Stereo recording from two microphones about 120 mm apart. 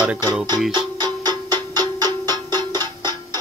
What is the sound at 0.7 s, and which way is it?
Music, 35° right (ahead or behind).